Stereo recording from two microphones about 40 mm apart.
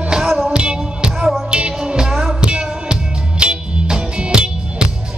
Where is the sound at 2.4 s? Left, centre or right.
Right.